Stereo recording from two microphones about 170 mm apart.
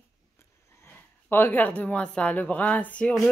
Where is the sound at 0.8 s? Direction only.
10° left (ahead or behind).